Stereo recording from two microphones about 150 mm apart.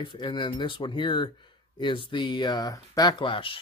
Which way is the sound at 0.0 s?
35° left (ahead or behind).